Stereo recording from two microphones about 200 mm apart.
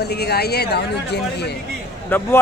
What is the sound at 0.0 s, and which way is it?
Speech, 55° left (ahead or behind).